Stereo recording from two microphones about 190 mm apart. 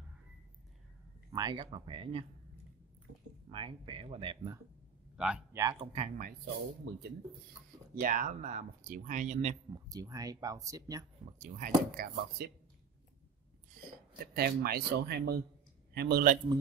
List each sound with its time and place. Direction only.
1.3 s speech: 20° right (ahead or behind)
3.4 s speech: 25° right (ahead or behind)
5.1 s speech: 5° right (ahead or behind)
5.6 s speech: 20° right (ahead or behind)
5.9 s speech: 40° right (ahead or behind)
6.8 s speech: 60° right (ahead or behind)
7.9 s speech: 45° right (ahead or behind)
9.8 s speech: 20° right (ahead or behind)
11.4 s speech: 40° right (ahead or behind)
14.2 s speech: 55° right (ahead or behind)